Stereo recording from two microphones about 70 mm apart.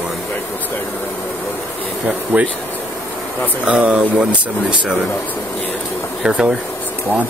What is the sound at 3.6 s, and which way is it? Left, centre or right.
Speech, centre.